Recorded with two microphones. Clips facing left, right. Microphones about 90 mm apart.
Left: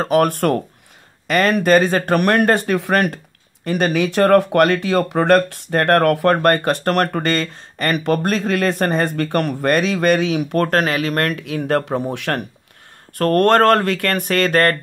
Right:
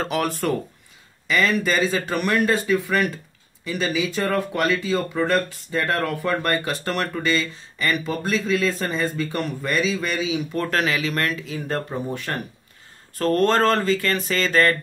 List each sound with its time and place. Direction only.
0.0 s speech: 45° left (ahead or behind); by 12.4 s 75° left (ahead or behind)
13.2 s speech: 60° left (ahead or behind)